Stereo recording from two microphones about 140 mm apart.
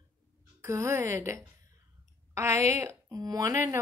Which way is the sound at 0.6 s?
20° right (ahead or behind).